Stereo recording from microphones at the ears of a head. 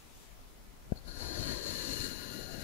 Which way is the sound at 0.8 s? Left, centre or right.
Left.